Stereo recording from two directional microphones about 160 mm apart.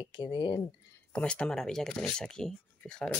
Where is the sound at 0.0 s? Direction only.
30° left (ahead or behind).